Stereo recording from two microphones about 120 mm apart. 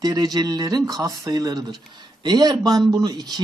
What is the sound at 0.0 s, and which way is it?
Speech, 30° right (ahead or behind).